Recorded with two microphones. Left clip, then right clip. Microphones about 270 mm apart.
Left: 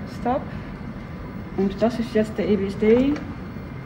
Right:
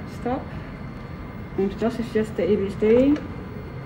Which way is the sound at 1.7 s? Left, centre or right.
Centre.